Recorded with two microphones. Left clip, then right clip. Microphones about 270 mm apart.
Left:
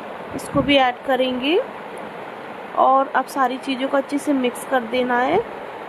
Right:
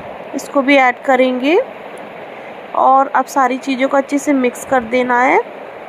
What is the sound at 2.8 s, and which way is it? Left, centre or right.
A woman's voice, centre.